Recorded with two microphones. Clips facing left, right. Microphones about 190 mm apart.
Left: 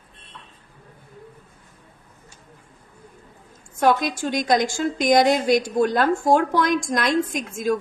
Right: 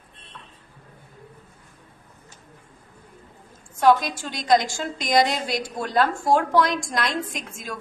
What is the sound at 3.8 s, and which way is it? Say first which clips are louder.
A woman's voice: right 1 dB; 55° left (ahead or behind).